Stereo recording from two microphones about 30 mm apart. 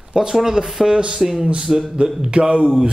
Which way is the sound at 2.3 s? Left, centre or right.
Right.